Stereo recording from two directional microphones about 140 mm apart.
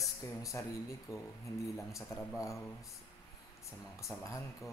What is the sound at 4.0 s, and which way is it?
Speech, 20° left (ahead or behind).